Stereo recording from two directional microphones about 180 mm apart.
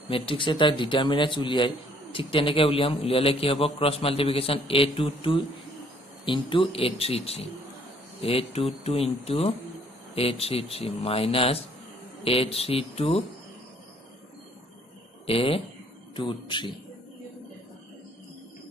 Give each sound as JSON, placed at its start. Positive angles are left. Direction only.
{"t": 0.1, "sound": "a man's voice", "side_deg": 30}
{"t": 15.2, "sound": "a man's voice", "side_deg": 30}